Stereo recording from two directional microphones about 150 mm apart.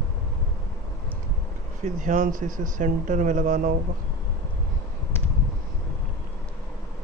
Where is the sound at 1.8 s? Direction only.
55° right (ahead or behind).